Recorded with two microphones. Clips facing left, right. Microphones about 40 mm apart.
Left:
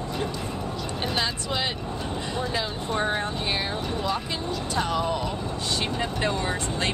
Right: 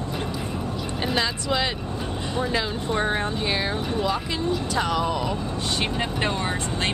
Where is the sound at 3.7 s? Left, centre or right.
Centre.